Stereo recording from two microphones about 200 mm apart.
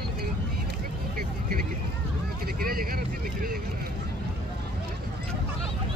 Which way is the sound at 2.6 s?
45° right (ahead or behind).